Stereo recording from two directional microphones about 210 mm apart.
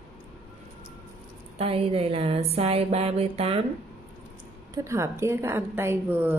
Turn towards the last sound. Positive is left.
turn(degrees=-10)  # may be behind; listen again after turning